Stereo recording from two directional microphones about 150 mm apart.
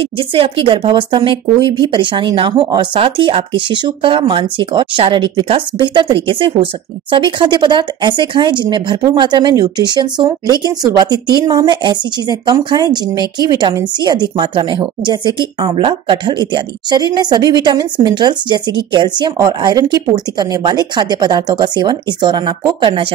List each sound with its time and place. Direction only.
0.0 s a woman's voice: 35° right (ahead or behind)